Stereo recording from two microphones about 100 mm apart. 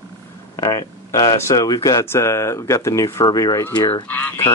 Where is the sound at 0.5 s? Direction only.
35° left (ahead or behind).